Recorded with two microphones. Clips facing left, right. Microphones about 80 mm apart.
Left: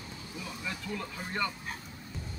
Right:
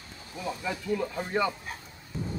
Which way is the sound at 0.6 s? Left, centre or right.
Centre.